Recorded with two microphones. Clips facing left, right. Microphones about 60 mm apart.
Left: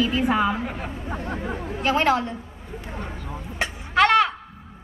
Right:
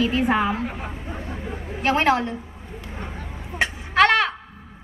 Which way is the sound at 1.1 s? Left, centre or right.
Left.